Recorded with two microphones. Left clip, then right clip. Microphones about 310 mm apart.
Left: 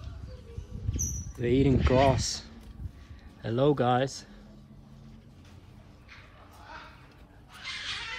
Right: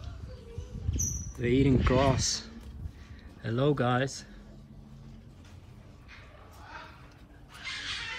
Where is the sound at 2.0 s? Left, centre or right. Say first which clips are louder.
Left 2 dB; centre.